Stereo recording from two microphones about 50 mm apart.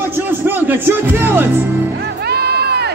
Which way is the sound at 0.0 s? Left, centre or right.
Right.